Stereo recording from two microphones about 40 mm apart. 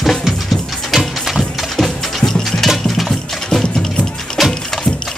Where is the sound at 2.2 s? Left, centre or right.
Centre.